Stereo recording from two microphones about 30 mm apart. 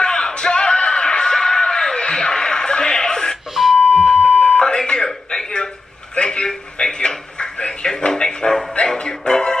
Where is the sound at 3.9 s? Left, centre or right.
Left.